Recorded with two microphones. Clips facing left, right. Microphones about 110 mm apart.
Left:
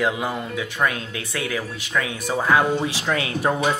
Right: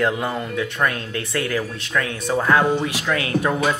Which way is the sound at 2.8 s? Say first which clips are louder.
Right 1 dB; 25° left (ahead or behind).